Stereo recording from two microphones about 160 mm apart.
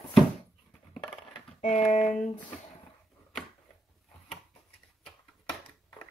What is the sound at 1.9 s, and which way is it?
Speech, 50° left (ahead or behind).